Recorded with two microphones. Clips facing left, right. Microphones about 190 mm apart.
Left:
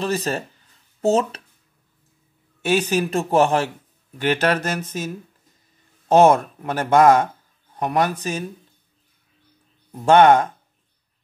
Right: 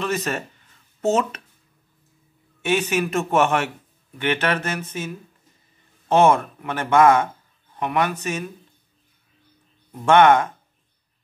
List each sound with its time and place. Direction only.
0.0 s speech: 35° left (ahead or behind)
2.6 s speech: 35° left (ahead or behind)
10.0 s speech: 35° left (ahead or behind)